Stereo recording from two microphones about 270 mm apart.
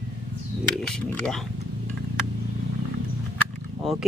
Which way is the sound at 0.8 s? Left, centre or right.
Centre.